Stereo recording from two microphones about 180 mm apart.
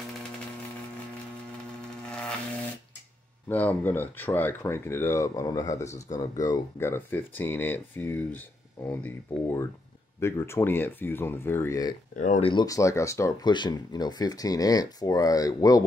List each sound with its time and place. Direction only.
3.4 s speech: 10° left (ahead or behind)
12.2 s speech: 45° left (ahead or behind)
12.4 s speech: 20° left (ahead or behind)